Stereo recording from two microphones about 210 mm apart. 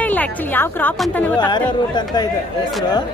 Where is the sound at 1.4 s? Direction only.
20° left (ahead or behind).